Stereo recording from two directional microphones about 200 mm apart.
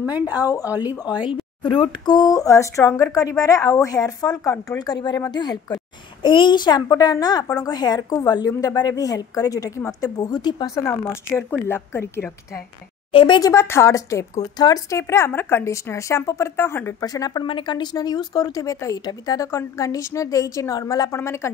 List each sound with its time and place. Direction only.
0.7 s speech: 10° right (ahead or behind)
1.3 s a child's voice: 25° left (ahead or behind)
13.1 s speech: 25° left (ahead or behind)